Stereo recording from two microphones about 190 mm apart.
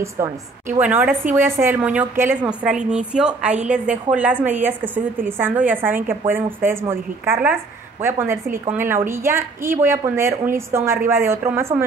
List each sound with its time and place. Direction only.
0.2 s a woman's voice: 15° right (ahead or behind)